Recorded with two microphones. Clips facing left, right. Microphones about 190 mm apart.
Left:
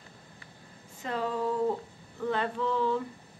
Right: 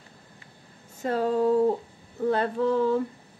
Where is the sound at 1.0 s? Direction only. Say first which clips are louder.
Right 8 dB; 40° right (ahead or behind).